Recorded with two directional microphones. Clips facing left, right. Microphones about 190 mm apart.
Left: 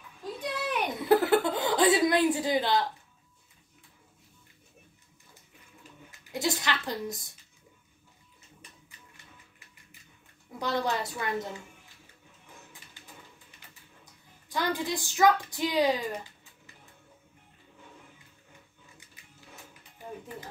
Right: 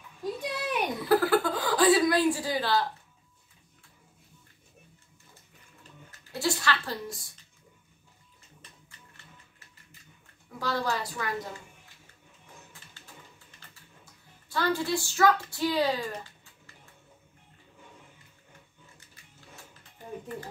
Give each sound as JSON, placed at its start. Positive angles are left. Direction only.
{"t": 0.4, "sound": "a sound", "side_deg": -10}
{"t": 1.0, "sound": "chuckle", "side_deg": 20}
{"t": 6.1, "sound": "speech", "side_deg": 20}
{"t": 10.6, "sound": "a woman's voice", "side_deg": 20}
{"t": 13.0, "sound": "a sound", "side_deg": 15}
{"t": 14.5, "sound": "a woman's voice", "side_deg": 15}